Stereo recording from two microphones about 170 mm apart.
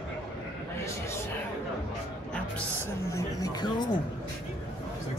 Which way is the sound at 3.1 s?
20° left (ahead or behind).